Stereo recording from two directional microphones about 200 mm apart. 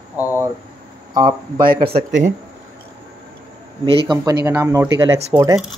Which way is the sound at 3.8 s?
25° right (ahead or behind).